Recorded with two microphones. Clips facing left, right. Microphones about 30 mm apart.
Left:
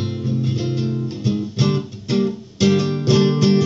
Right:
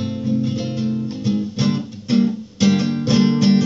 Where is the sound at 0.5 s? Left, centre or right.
Left.